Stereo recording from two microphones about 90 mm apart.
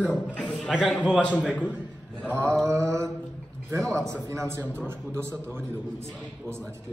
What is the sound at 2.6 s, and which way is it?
Speech, 35° right (ahead or behind).